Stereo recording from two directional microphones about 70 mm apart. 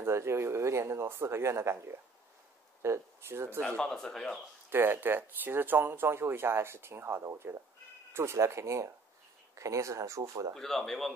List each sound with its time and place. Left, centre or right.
0.0 s speech: right
3.6 s a man's voice: centre
4.6 s speech: right
10.5 s speech: centre